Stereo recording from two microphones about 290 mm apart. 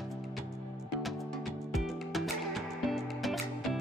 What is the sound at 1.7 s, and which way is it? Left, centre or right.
Music, centre.